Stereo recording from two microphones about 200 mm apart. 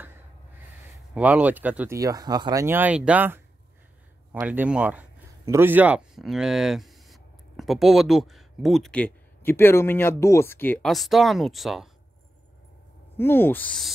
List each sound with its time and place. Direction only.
1.1 s speech: 5° right (ahead or behind)
13.2 s speech: 10° left (ahead or behind)